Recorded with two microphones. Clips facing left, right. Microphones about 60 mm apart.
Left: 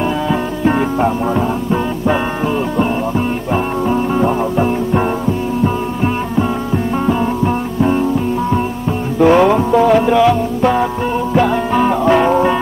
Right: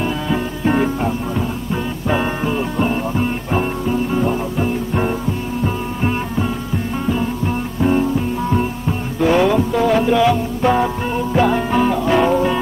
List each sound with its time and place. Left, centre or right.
0.3 s music: centre
3.9 s music: left
9.2 s music: left
9.9 s music: centre
11.8 s music: centre